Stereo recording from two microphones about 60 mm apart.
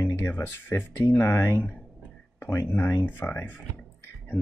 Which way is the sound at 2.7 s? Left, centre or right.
Left.